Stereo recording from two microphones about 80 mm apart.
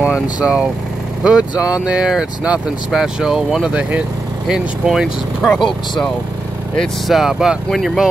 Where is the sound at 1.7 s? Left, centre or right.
Centre.